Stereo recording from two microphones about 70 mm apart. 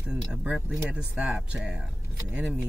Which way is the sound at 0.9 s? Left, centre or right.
Centre.